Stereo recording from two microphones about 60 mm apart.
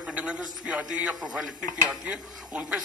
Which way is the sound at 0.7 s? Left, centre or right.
Right.